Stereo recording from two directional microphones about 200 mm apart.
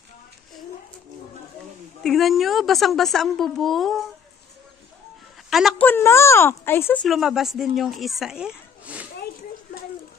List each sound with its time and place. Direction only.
2.0 s a woman's voice: centre (ahead or behind)
5.5 s a woman's voice: centre (ahead or behind)
5.9 s speech: 10° left (ahead or behind); by 9.1 s 5° right (ahead or behind)